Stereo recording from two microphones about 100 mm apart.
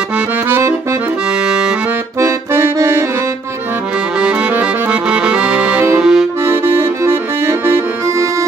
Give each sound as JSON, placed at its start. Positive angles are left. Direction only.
{"t": 0.5, "sound": "accordion", "side_deg": -25}
{"t": 2.1, "sound": "accordion", "side_deg": -25}
{"t": 5.1, "sound": "accordion", "side_deg": -10}
{"t": 6.4, "sound": "accordion", "side_deg": -25}